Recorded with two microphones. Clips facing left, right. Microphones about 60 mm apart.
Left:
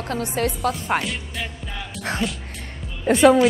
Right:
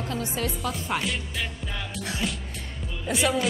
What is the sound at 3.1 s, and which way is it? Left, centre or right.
Speech, left.